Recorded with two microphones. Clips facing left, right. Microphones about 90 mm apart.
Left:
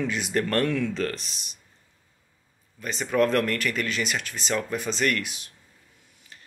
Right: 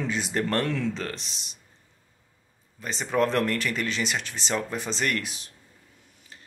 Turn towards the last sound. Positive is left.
turn(degrees=-30)  # may be behind; listen again after turning